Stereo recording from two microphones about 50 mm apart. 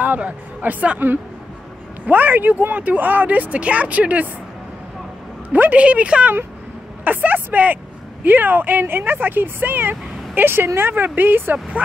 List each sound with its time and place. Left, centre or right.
0.0 s speech: right
5.5 s speech: right
5.9 s speech: right
7.1 s speech: right